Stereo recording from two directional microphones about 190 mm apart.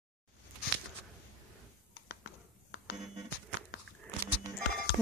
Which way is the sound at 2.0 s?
60° left (ahead or behind).